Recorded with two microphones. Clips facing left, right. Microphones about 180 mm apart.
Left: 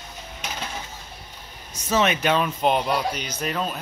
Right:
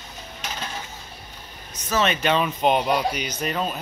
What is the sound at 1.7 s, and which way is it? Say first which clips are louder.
Speech: left 1 dB; 10° left (ahead or behind).